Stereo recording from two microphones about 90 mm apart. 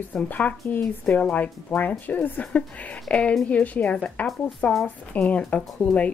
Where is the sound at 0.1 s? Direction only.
15° left (ahead or behind).